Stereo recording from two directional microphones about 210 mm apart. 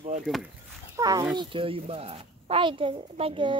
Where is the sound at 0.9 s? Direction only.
15° right (ahead or behind).